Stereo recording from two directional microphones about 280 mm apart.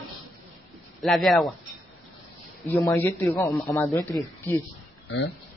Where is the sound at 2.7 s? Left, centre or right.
Centre.